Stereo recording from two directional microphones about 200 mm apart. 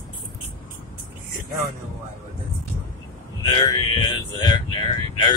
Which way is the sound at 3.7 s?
20° left (ahead or behind).